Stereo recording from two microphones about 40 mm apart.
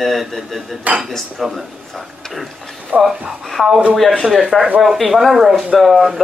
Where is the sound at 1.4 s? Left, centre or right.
Centre.